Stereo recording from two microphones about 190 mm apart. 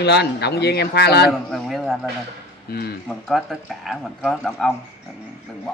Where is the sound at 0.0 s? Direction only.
60° left (ahead or behind).